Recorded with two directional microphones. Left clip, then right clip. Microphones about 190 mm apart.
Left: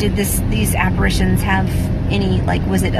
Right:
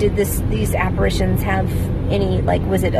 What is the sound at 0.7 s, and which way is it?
Speech, 15° right (ahead or behind).